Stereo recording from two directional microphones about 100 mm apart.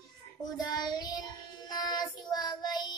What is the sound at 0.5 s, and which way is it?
Child singing, 45° left (ahead or behind).